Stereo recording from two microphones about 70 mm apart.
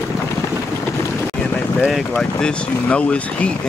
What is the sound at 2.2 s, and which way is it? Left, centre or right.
Speech, centre.